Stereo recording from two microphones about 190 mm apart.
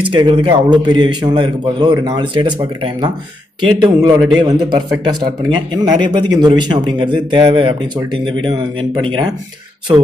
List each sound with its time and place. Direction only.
0.1 s a man's voice: 25° right (ahead or behind)